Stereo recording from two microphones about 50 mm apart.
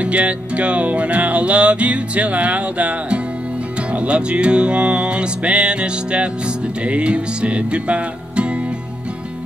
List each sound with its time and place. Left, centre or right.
0.0 s music: right